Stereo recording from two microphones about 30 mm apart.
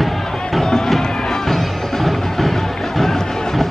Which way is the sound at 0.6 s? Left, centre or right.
Centre.